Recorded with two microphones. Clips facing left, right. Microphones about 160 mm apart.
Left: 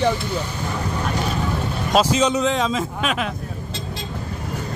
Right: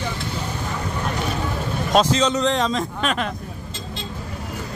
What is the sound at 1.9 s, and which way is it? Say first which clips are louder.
Speech: even; 10° left (ahead or behind).